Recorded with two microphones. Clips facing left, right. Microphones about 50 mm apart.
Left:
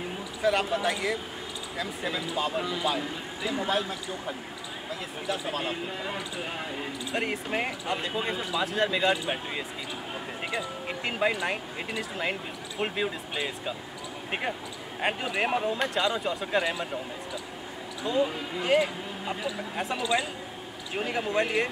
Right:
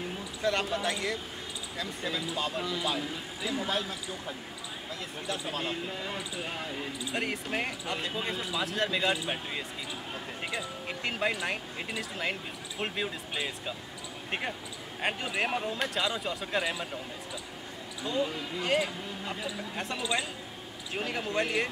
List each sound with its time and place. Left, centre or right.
0.4 s speech: centre
15.0 s speech: centre
18.0 s speech: centre